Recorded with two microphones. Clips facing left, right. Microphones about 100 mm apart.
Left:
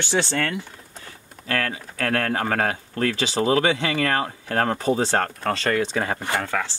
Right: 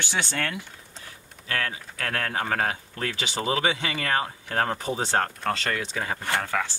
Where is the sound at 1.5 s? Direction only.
50° left (ahead or behind).